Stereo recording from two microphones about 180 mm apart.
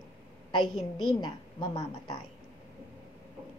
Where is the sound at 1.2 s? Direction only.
25° left (ahead or behind).